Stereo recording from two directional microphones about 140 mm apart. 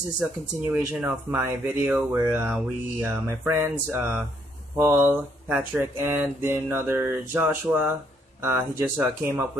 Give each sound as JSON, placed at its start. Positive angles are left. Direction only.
{"t": 0.7, "sound": "speech", "side_deg": -15}